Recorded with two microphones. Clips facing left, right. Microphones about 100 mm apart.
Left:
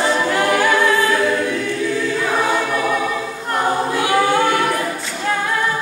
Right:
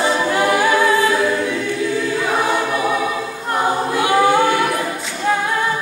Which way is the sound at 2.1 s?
10° right (ahead or behind).